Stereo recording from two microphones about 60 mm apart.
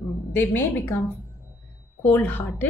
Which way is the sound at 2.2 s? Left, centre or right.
Left.